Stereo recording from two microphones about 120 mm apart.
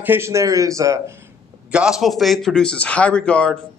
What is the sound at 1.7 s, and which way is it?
Speech, 5° right (ahead or behind).